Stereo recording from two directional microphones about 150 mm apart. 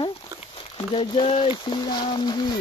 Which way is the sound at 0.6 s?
40° left (ahead or behind).